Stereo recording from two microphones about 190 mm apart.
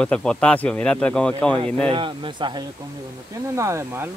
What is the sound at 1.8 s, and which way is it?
Speech, 25° right (ahead or behind).